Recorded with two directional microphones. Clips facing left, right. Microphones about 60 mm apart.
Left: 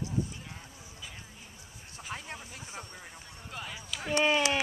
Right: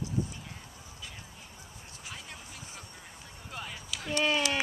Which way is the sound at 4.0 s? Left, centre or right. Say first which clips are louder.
Left 2 dB; centre.